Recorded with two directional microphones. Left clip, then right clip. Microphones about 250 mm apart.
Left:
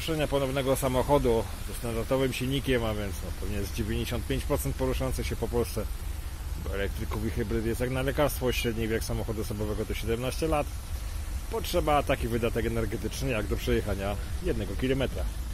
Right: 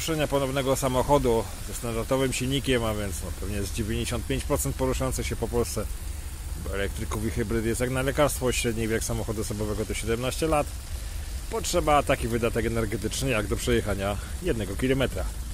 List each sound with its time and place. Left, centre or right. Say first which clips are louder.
0.0 s speech: right 2 dB; centre